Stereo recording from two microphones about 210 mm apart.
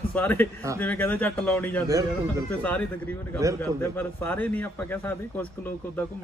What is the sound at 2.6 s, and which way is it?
A man's voice, 10° left (ahead or behind).